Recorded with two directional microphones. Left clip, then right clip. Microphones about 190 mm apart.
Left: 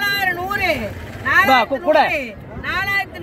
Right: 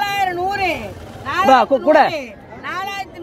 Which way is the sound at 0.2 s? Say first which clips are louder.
Right 1 dB; 25° left (ahead or behind).